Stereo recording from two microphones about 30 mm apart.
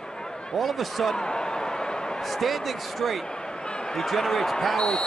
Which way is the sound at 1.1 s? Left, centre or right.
Left.